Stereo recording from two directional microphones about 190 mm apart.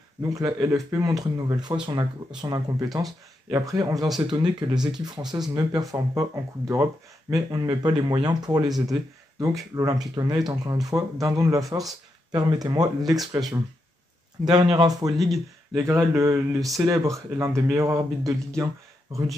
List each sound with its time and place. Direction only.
0.2 s speech: 20° right (ahead or behind)
14.4 s speech: 20° right (ahead or behind)